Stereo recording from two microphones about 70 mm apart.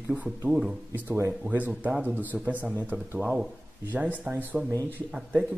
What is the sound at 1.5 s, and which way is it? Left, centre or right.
Speech, right.